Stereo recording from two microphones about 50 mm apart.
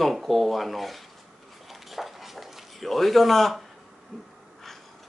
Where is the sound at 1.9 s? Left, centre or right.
Centre.